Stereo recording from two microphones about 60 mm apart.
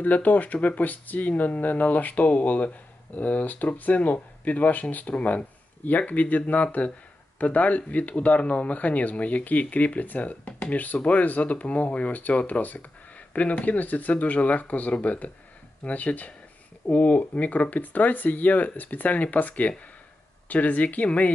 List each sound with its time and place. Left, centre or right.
0.0 s speech: left